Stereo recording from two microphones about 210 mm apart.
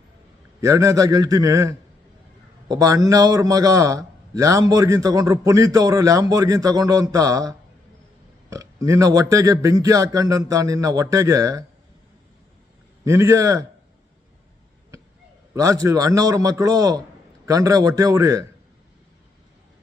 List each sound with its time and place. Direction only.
0.6 s a man's voice: 15° right (ahead or behind)
13.0 s a man's voice: 15° right (ahead or behind)
15.5 s a man's voice: 15° right (ahead or behind)